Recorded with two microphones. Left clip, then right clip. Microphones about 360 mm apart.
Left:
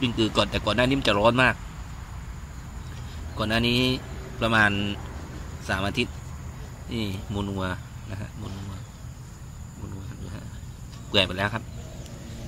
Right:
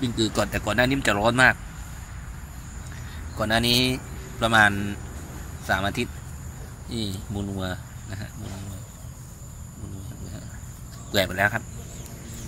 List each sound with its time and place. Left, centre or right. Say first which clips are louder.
0.2 s speech: even; centre
3.3 s speech: right 3 dB; centre
6.9 s speech: even; centre
7.3 s speech: left 2 dB; centre
11.1 s speech: right 1 dB; centre